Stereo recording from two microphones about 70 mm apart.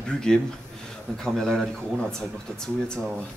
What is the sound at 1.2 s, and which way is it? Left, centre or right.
Speech, centre.